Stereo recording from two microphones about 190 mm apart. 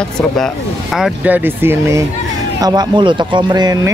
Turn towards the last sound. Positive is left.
turn(degrees=-20)  # may be behind; listen again after turning